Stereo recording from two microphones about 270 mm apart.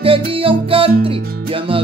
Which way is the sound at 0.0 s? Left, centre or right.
Centre.